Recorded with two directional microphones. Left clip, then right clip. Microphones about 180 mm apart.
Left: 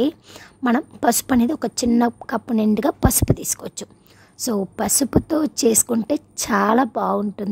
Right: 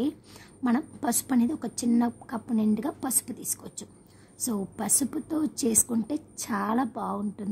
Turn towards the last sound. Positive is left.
turn(degrees=50)  # may be behind; listen again after turning